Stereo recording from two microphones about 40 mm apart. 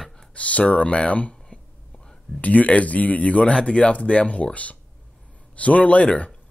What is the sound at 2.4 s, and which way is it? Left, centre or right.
A man's voice, left.